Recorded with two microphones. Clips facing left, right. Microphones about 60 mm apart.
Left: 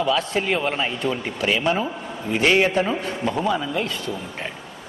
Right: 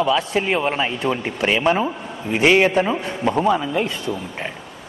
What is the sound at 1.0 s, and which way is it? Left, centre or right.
A man's voice, right.